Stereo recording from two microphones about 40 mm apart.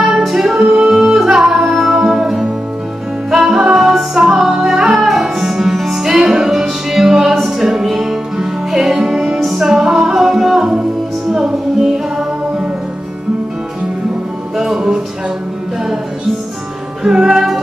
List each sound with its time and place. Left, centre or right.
0.4 s music: centre
10.1 s music: centre
14.6 s music: centre
17.0 s music: centre